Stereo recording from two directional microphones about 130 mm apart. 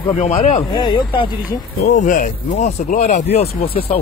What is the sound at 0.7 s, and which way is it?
Speech, 35° left (ahead or behind).